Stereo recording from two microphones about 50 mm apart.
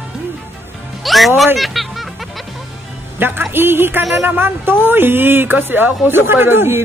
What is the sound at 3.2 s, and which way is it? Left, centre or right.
Speech, right.